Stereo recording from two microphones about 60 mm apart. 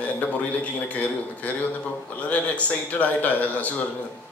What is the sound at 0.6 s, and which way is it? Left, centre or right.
Speech, left.